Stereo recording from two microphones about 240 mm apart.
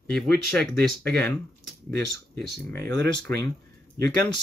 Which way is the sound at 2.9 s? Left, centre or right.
Right.